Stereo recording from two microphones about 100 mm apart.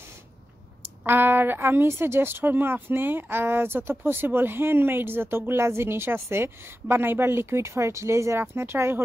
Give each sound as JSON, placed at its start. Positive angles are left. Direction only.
{"t": 1.0, "sound": "speech", "side_deg": -20}